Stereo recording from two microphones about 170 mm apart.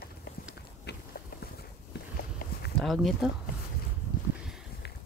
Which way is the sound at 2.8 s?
Centre (ahead or behind).